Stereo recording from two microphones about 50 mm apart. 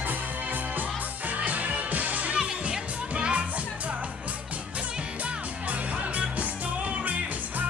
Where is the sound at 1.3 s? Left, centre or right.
Right.